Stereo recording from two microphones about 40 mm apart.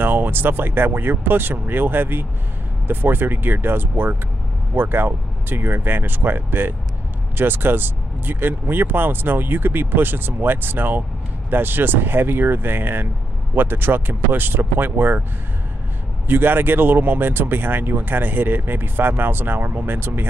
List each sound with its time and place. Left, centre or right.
0.0 s speech: right
16.3 s speech: right